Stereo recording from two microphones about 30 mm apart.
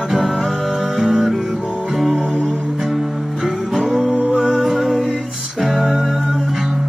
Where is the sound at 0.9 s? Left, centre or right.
Centre.